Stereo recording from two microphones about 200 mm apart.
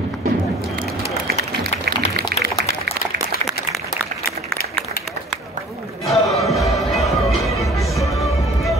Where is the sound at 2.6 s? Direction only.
35° left (ahead or behind).